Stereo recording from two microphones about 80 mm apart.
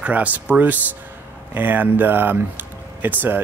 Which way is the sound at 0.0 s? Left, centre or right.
Centre.